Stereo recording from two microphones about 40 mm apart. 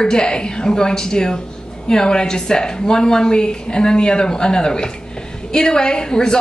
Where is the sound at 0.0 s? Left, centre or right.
Centre.